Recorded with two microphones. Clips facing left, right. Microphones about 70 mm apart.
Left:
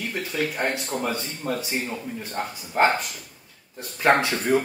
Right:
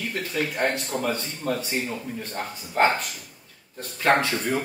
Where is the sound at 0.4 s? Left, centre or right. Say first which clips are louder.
Right 1 dB; centre.